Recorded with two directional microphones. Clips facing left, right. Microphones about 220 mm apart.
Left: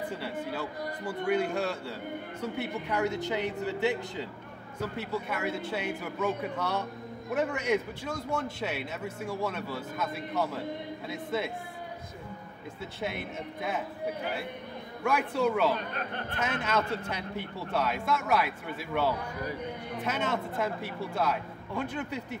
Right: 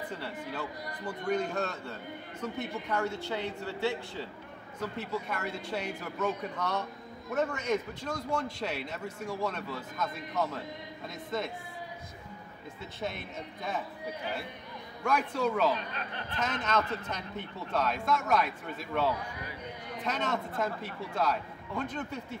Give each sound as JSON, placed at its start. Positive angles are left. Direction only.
{"t": 0.2, "sound": "speech", "side_deg": 5}
{"t": 4.7, "sound": "a man's voice", "side_deg": 5}
{"t": 13.0, "sound": "speech", "side_deg": 5}
{"t": 15.0, "sound": "speech", "side_deg": 5}
{"t": 15.9, "sound": "a man's voice", "side_deg": 50}
{"t": 16.6, "sound": "speech", "side_deg": 10}